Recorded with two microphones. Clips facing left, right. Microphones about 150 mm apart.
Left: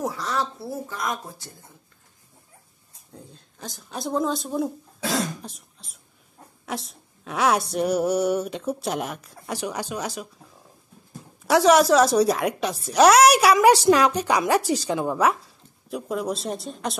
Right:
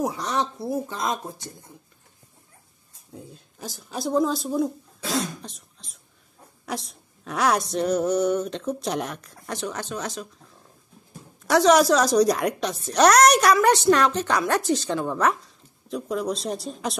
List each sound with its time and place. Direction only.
0.0 s speech: 20° right (ahead or behind)
3.2 s a woman's voice: 5° right (ahead or behind); by 10.2 s 10° left (ahead or behind)
11.4 s speech: 5° left (ahead or behind)